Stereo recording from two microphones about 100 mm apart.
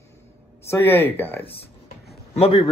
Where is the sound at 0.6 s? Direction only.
25° left (ahead or behind).